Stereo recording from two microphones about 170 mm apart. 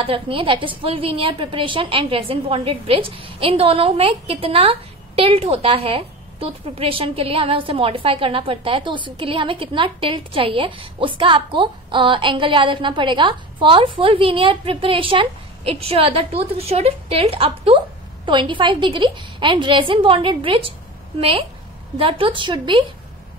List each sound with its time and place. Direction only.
0.0 s a woman's voice: 30° right (ahead or behind)